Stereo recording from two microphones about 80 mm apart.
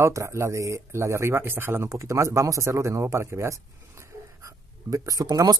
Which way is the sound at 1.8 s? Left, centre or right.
Right.